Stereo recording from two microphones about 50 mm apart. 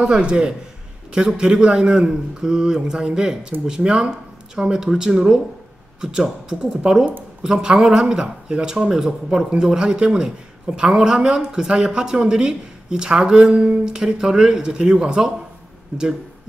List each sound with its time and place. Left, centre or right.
0.0 s a man's voice: centre